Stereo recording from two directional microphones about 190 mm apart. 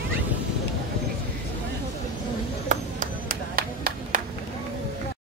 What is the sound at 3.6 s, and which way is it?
Clapping, 50° right (ahead or behind).